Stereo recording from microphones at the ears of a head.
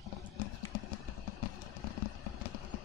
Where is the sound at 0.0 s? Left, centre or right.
Left.